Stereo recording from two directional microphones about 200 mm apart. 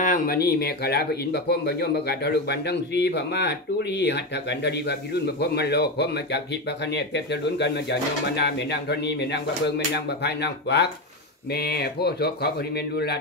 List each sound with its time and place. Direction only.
0.0 s speech: 45° left (ahead or behind)
7.5 s speech: 60° left (ahead or behind)